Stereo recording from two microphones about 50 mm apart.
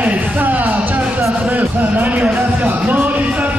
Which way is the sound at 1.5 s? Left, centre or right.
Right.